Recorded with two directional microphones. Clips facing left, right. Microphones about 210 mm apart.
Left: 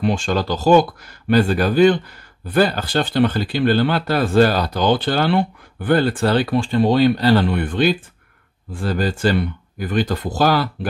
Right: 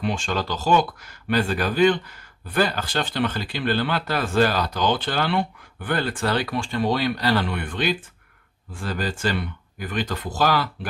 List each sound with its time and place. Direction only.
0.0 s speech: 40° left (ahead or behind)